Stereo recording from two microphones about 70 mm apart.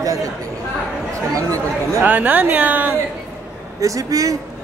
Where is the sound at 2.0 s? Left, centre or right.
Right.